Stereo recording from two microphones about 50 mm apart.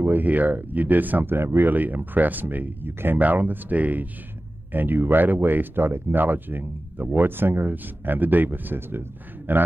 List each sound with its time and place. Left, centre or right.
0.2 s speech: right
1.3 s speech: right
1.7 s speech: right
2.9 s speech: right
3.2 s speech: right
4.7 s speech: right